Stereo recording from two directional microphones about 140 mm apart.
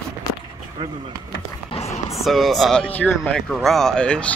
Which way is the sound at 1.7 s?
50° left (ahead or behind).